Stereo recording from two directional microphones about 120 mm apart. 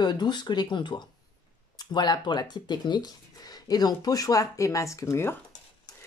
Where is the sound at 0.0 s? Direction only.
35° left (ahead or behind); by 5.4 s 20° left (ahead or behind).